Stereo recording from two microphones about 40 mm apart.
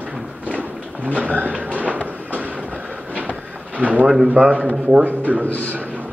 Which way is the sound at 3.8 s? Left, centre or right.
Right.